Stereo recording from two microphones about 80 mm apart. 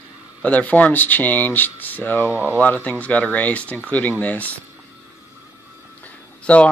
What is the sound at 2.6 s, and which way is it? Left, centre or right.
Speech, left.